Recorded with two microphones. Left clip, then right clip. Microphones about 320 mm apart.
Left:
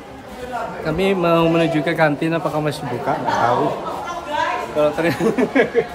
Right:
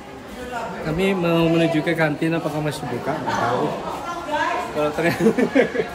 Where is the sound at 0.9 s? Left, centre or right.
Centre.